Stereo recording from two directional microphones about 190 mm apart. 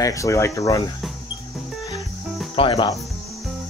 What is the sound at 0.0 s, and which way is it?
Speech, 15° left (ahead or behind).